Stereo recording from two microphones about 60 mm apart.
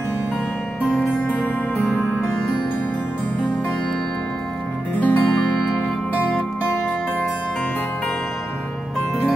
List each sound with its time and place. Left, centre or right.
1.2 s music: left
4.9 s music: left